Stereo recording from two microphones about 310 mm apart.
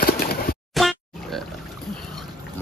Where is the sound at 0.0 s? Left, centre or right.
Left.